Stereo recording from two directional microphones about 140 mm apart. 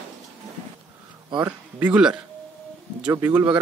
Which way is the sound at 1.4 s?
10° right (ahead or behind).